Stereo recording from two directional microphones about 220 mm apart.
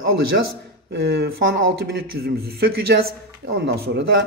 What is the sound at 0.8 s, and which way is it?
Speech, 45° right (ahead or behind).